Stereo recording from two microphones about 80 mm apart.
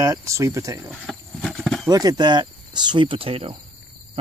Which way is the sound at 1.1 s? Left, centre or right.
Centre.